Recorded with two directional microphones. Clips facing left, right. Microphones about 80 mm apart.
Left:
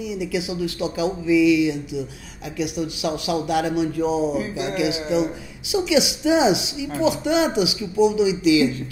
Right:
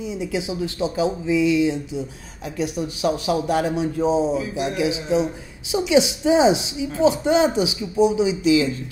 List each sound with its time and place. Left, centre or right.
0.0 s speech: right